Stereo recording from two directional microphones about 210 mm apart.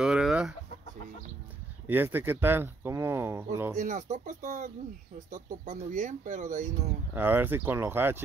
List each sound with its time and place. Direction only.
0.0 s chicken: 5° right (ahead or behind)
1.9 s speech: 10° right (ahead or behind)
3.7 s speech: 35° right (ahead or behind)
7.2 s speech: 10° right (ahead or behind)